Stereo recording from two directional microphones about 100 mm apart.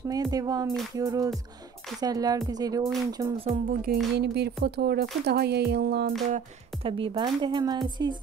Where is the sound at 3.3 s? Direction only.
70° right (ahead or behind).